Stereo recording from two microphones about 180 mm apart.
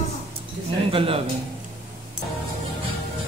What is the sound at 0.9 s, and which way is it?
Speech, 30° right (ahead or behind).